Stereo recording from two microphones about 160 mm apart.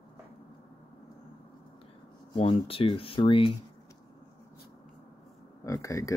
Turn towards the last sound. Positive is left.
turn(degrees=20)  # may be behind; listen again after turning